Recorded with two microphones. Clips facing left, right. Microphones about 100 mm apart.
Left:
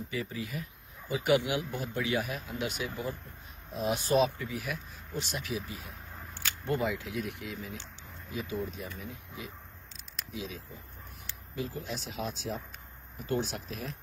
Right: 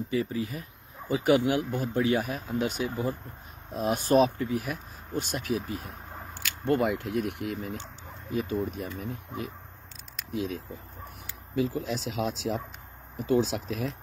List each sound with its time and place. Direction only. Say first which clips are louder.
0.1 s speech: right 7 dB; 30° right (ahead or behind); by 7.7 s 65° right (ahead or behind)
8.4 s speech: right 6 dB; 50° right (ahead or behind)
11.5 s speech: right 8 dB; 85° right